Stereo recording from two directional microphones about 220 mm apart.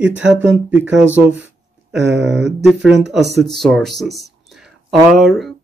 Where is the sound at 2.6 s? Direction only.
Centre (ahead or behind).